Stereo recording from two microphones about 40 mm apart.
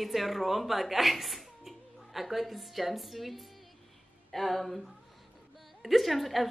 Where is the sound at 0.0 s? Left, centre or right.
Centre.